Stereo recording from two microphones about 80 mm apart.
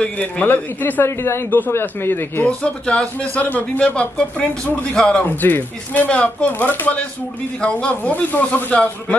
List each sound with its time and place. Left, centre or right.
0.0 s a man's voice: centre
2.4 s speech: centre
5.2 s a man's voice: left